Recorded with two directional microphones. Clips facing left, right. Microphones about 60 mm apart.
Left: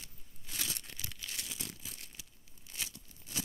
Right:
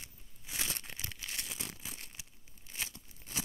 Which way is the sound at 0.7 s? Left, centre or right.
Right.